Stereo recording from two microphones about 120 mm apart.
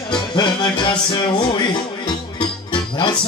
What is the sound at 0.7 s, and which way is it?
Music, 40° left (ahead or behind).